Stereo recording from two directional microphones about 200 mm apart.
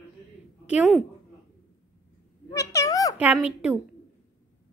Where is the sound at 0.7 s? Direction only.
5° right (ahead or behind).